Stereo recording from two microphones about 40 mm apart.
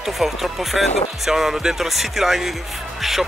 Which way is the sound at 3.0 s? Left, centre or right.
Centre.